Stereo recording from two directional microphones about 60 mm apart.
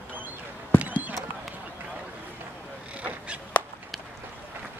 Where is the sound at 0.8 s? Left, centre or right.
Right.